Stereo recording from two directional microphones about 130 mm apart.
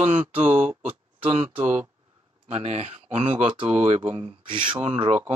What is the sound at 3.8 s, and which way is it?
Speech, 55° right (ahead or behind).